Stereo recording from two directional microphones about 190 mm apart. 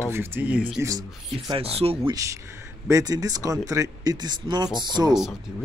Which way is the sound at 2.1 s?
15° right (ahead or behind).